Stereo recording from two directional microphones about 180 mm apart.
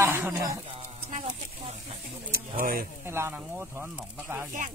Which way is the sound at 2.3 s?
50° right (ahead or behind).